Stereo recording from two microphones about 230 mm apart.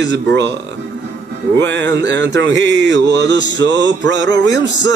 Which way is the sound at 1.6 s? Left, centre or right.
Right.